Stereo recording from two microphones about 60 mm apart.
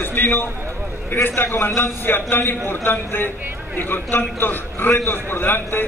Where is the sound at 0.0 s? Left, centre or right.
Left.